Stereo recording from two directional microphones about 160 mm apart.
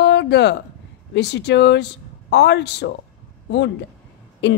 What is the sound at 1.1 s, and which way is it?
A woman's voice, 90° left.